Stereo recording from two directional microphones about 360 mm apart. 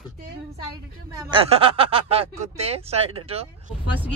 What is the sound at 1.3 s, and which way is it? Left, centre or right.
Speech, centre.